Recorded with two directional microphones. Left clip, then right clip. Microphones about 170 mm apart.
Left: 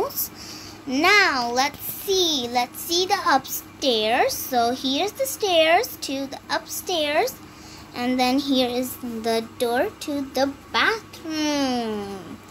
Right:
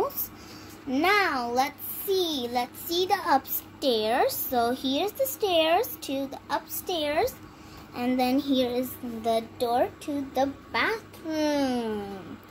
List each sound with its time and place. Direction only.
0.8 s a child's voice: 5° right (ahead or behind)
8.4 s a woman's voice: 10° left (ahead or behind)
9.3 s speech: 30° left (ahead or behind)
10.7 s a child's voice: 10° left (ahead or behind)